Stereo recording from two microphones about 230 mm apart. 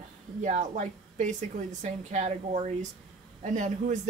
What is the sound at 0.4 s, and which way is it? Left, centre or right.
A man's voice, right.